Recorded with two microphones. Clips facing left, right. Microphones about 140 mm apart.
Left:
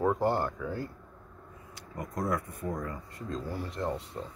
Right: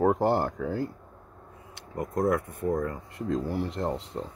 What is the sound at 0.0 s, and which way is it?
Speech, 70° right (ahead or behind).